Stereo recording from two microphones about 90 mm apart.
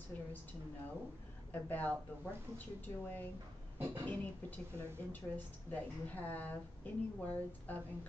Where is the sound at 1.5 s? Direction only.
20° left (ahead or behind).